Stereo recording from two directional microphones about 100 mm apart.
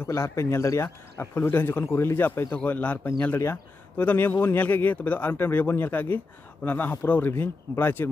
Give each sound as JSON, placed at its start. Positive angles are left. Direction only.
{"t": 0.0, "sound": "speech", "side_deg": 30}